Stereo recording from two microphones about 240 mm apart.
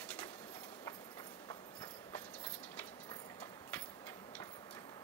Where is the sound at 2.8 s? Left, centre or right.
Centre.